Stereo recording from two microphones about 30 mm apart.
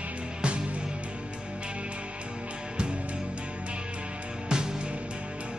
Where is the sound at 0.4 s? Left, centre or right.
Right.